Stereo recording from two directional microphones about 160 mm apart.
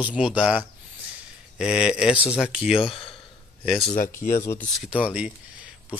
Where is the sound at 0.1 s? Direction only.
5° right (ahead or behind).